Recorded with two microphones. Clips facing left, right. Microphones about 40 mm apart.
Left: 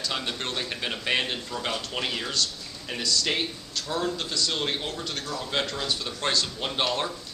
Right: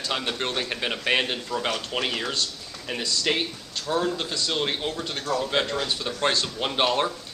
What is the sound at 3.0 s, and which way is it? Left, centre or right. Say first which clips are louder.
Speech: left 1 dB; right.